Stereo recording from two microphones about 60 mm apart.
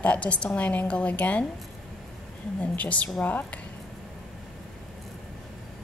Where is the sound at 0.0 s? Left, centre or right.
Left.